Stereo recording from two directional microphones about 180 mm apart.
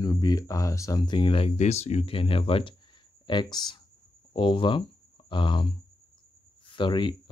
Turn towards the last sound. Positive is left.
turn(degrees=25)  # may be behind; listen again after turning